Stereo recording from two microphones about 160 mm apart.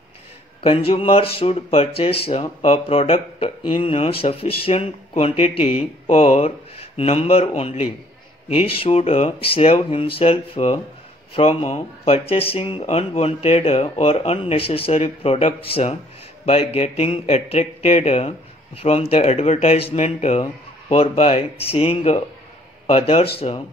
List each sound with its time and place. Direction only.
0.6 s speech: 35° left (ahead or behind)